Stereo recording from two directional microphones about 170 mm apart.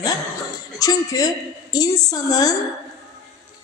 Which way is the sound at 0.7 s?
20° left (ahead or behind).